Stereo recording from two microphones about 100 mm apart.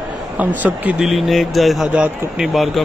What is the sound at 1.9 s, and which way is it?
Speech, 10° right (ahead or behind).